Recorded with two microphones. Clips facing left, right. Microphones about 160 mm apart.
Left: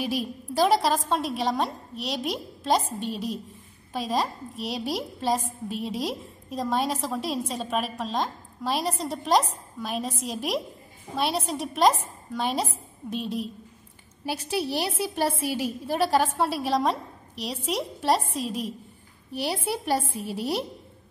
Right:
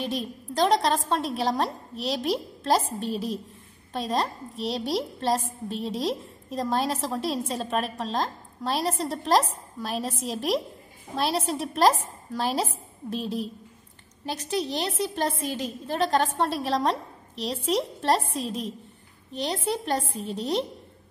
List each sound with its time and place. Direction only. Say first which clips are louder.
0.0 s a woman's voice: left 2 dB; 5° left (ahead or behind)